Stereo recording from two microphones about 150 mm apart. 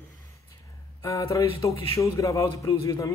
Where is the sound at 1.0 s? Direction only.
20° left (ahead or behind).